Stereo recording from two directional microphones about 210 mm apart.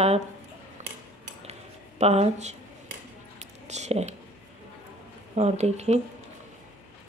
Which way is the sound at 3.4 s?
35° right (ahead or behind).